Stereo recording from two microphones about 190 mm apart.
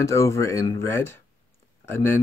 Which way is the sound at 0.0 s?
15° left (ahead or behind).